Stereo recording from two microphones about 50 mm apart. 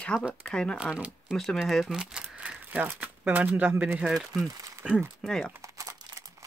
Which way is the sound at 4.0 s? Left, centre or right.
Centre.